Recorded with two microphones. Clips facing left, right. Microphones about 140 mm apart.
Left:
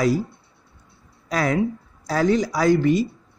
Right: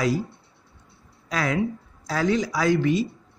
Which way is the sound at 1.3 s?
40° left (ahead or behind).